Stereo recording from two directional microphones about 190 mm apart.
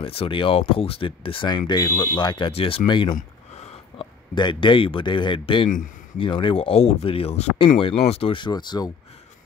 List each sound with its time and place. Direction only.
0.0 s speech: 30° left (ahead or behind); by 2.1 s 10° left (ahead or behind)
2.1 s speech: 25° left (ahead or behind)
3.2 s a sound: 35° left (ahead or behind)
4.4 s speech: 25° left (ahead or behind)